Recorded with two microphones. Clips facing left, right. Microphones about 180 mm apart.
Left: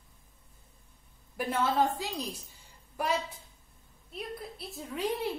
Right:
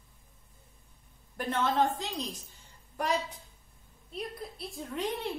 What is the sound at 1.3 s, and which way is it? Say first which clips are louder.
A woman's voice: even; 10° left (ahead or behind).